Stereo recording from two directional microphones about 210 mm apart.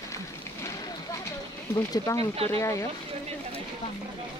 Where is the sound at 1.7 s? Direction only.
15° left (ahead or behind).